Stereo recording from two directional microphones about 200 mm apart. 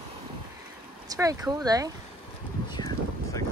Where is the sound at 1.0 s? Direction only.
15° right (ahead or behind).